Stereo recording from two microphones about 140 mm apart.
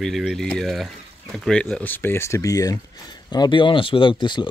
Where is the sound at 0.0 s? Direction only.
Centre (ahead or behind).